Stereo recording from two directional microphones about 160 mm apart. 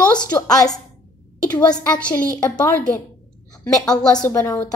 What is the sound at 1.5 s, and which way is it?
A woman's voice, 5° left (ahead or behind).